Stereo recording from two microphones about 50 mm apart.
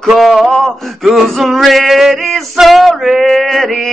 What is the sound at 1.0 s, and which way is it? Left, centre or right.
Speech, centre.